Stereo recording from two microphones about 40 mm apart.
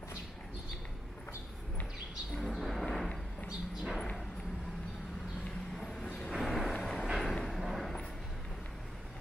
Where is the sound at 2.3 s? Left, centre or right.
Centre.